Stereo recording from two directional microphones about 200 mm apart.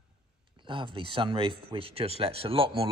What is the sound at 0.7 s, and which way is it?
A man's voice, 25° right (ahead or behind).